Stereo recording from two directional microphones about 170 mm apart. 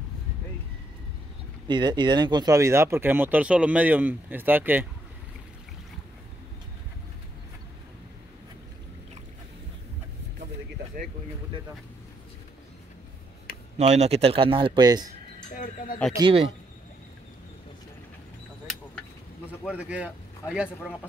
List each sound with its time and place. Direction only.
1.7 s speech: 25° right (ahead or behind)
13.7 s speech: 40° right (ahead or behind); by 15.0 s 25° right (ahead or behind)
15.5 s speech: 50° left (ahead or behind)
16.2 s speech: 25° right (ahead or behind)
19.6 s speech: 5° right (ahead or behind)